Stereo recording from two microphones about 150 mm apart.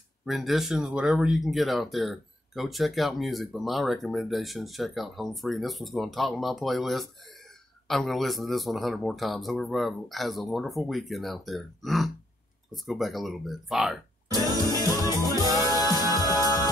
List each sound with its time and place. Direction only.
0.2 s speech: centre (ahead or behind)
14.9 s music: 25° left (ahead or behind)
15.4 s music: 25° right (ahead or behind)
15.7 s music: 25° left (ahead or behind)